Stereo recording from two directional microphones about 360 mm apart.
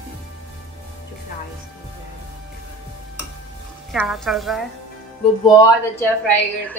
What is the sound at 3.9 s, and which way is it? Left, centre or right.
A woman's voice, centre.